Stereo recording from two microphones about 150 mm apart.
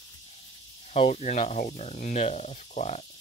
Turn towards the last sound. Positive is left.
turn(degrees=50)  # may be behind; listen again after turning